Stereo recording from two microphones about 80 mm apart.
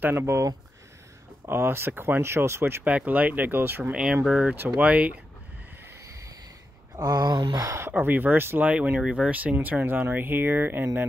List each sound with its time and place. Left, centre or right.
0.0 s speech: right
2.8 s speech: centre
3.9 s speech: centre
7.0 s a sound: right
7.5 s speech: right
7.9 s speech: right